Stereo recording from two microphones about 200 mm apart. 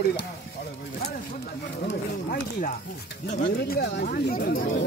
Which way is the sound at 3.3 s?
50° left (ahead or behind).